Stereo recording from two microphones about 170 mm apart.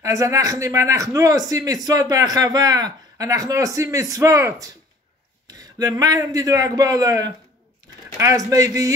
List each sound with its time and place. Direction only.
0.0 s speech: 20° right (ahead or behind)